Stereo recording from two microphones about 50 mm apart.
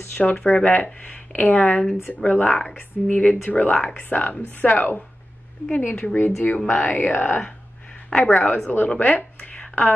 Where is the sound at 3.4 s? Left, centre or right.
Left.